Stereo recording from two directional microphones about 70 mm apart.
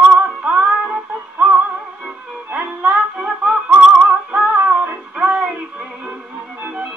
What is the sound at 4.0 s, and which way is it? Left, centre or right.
Music, right.